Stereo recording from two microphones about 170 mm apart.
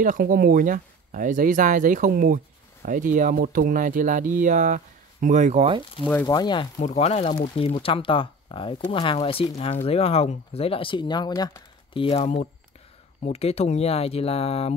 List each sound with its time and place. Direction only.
0.0 s speech: 55° right (ahead or behind)
6.2 s speech: 25° left (ahead or behind)
6.8 s speech: 40° left (ahead or behind)